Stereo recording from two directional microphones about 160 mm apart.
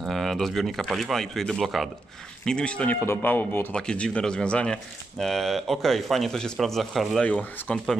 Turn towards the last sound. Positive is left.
turn(degrees=10)  # may be behind; listen again after turning